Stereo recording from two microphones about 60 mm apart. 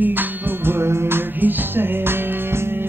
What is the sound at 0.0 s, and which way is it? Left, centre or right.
Music, right.